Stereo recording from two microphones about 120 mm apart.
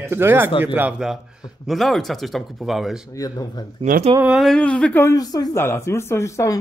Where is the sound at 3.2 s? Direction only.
30° left (ahead or behind).